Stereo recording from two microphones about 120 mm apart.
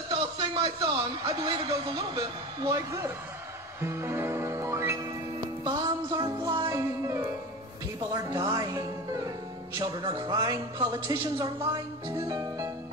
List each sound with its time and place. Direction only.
0.1 s a man's voice: 40° right (ahead or behind)
3.8 s music: 20° right (ahead or behind)
5.6 s music: 35° right (ahead or behind)
10.0 s speech: 35° right (ahead or behind)